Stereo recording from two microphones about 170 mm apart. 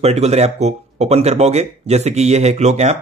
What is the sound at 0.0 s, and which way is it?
Speech, 40° right (ahead or behind).